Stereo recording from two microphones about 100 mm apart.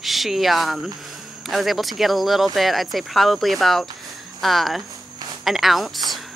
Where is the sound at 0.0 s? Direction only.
Centre (ahead or behind).